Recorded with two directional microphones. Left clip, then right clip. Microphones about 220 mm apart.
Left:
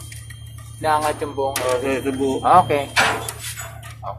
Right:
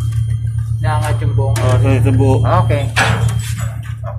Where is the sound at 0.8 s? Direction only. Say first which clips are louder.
Left 2 dB; 30° left (ahead or behind).